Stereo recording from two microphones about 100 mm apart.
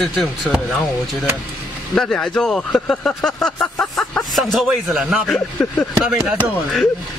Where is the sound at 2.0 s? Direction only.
5° left (ahead or behind).